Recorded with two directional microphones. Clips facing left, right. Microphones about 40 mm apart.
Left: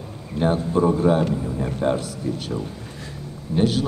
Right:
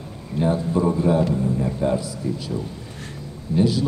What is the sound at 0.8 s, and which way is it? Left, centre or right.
Speech, centre.